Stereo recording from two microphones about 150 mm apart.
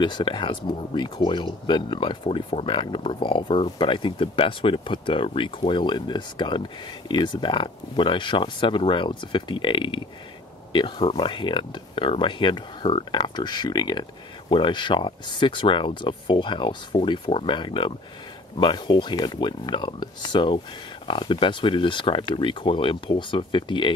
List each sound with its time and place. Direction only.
0.0 s speech: 30° left (ahead or behind)